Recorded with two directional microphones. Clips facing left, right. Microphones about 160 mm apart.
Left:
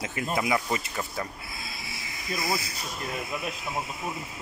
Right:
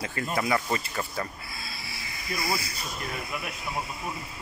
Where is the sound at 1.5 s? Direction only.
20° left (ahead or behind).